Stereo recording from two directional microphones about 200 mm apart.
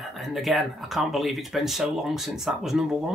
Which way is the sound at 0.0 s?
Centre (ahead or behind).